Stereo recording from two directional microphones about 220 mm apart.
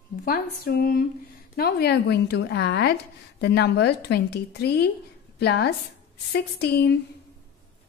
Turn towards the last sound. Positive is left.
turn(degrees=50)  # may be behind; listen again after turning